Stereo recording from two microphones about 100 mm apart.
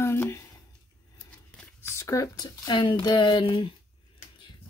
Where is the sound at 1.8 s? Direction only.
30° left (ahead or behind).